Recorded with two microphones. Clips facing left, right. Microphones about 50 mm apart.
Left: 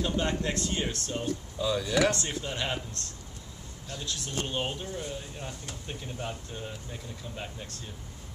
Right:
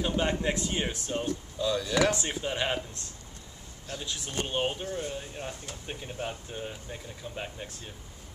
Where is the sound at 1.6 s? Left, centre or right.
Centre.